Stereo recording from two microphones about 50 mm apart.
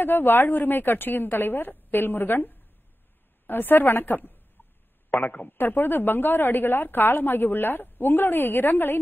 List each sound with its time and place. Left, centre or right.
0.0 s a woman's voice: left